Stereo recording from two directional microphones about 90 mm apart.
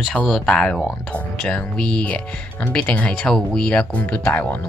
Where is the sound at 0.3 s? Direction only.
10° left (ahead or behind).